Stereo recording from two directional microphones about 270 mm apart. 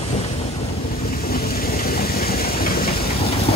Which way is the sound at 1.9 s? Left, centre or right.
Left.